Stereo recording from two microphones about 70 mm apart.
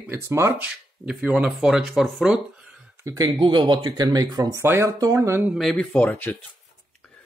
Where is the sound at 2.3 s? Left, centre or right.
Centre.